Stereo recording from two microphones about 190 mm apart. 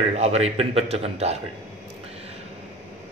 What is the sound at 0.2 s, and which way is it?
A man's voice, 35° right (ahead or behind).